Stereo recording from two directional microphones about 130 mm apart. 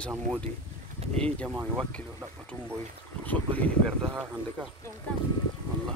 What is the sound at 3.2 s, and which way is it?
Speech, 10° left (ahead or behind).